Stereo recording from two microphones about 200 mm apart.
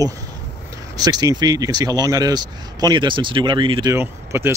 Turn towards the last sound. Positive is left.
turn(degrees=-10)  # may be behind; listen again after turning